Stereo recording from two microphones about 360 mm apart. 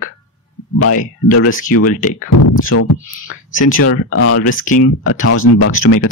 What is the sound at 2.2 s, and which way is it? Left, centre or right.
Speech, left.